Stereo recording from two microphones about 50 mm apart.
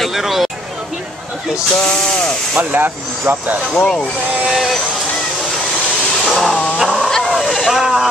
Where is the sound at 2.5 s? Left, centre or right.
Right.